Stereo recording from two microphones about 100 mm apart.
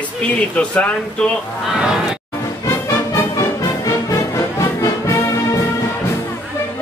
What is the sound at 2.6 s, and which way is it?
Music, 30° left (ahead or behind).